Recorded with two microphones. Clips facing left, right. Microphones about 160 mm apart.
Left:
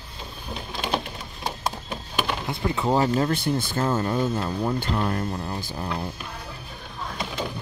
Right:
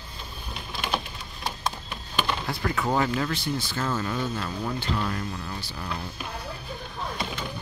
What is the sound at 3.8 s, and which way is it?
Speech, 35° left (ahead or behind).